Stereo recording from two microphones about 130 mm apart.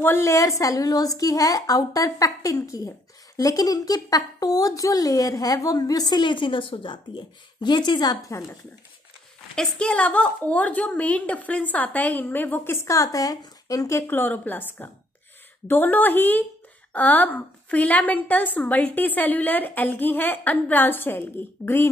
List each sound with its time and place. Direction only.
0.0 s speech: 20° left (ahead or behind)
9.6 s a woman's voice: 5° left (ahead or behind)